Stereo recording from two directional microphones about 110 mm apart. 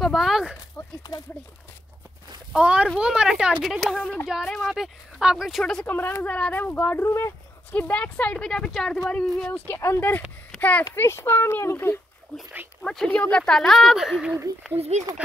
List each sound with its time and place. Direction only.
0.0 s speech: centre (ahead or behind)
2.5 s speech: 10° right (ahead or behind); by 5.9 s 5° left (ahead or behind)
5.9 s speech: 20° left (ahead or behind)
9.7 s a child's voice: 20° left (ahead or behind)
12.8 s speech: 5° left (ahead or behind)
14.8 s speech: 90° right